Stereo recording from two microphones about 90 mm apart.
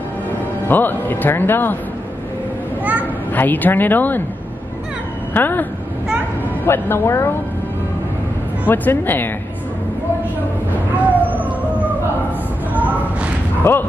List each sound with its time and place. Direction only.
0.7 s speech: 20° left (ahead or behind)
2.8 s a sound: 15° right (ahead or behind)
3.3 s speech: 20° left (ahead or behind)
5.3 s speech: 20° left (ahead or behind)
8.6 s speech: 20° left (ahead or behind)
11.2 s music: 20° right (ahead or behind)
12.7 s a sound: 15° right (ahead or behind)
13.6 s speech: 25° left (ahead or behind)